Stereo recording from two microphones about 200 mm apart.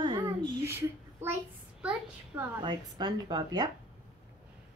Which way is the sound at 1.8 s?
5° right (ahead or behind).